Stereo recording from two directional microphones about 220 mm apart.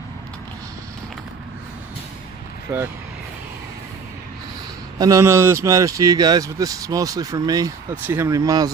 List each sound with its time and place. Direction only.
2.7 s speech: 10° right (ahead or behind)
4.9 s speech: 15° right (ahead or behind)